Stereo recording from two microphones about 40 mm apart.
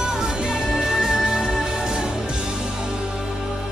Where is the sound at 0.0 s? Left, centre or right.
Centre.